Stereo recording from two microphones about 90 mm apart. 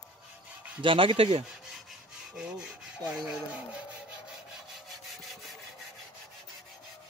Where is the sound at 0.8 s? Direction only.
75° right (ahead or behind).